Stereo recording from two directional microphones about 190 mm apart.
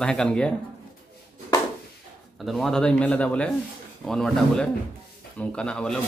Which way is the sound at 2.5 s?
Centre (ahead or behind).